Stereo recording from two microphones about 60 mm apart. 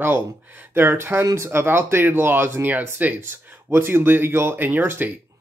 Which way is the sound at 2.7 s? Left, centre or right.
Right.